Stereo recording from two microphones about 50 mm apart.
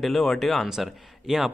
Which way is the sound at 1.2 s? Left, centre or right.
Centre.